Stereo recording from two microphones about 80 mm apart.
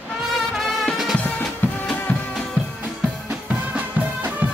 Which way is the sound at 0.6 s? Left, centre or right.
Centre.